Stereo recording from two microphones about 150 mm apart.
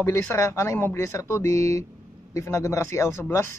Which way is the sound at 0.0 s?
15° left (ahead or behind).